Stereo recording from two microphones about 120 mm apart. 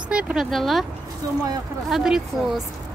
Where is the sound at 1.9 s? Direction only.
5° right (ahead or behind).